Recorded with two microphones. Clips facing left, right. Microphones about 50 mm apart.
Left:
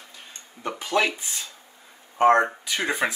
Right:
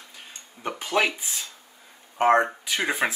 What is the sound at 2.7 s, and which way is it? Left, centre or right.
Speech, centre.